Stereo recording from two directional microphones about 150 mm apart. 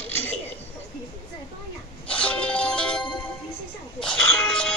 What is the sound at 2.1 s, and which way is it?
Music, 10° left (ahead or behind).